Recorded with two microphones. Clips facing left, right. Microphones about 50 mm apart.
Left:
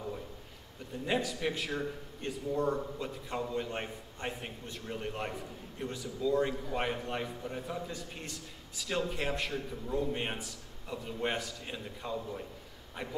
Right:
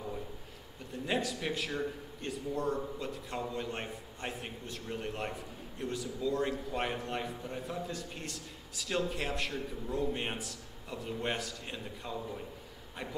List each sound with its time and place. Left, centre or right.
1.0 s a man's voice: centre